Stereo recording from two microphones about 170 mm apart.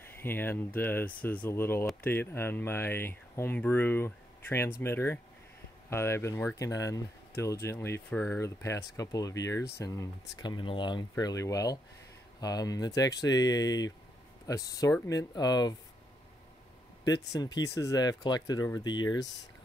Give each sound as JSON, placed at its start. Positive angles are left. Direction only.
{"t": 0.2, "sound": "speech", "side_deg": 10}
{"t": 17.0, "sound": "speech", "side_deg": 20}